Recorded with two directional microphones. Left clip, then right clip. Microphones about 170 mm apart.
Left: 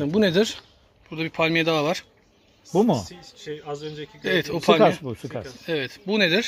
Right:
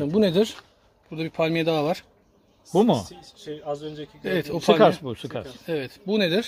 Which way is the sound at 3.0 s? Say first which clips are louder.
Left 2 dB; 25° right (ahead or behind).